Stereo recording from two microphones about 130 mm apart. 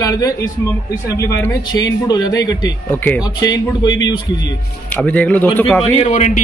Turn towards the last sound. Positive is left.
turn(degrees=55)  # may be behind; listen again after turning